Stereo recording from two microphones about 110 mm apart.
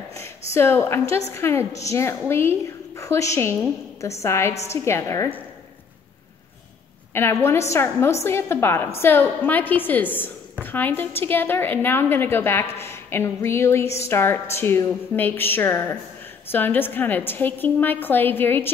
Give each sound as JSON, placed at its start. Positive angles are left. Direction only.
{"t": 0.1, "sound": "a woman's voice", "side_deg": 25}
{"t": 7.2, "sound": "a woman's voice", "side_deg": 25}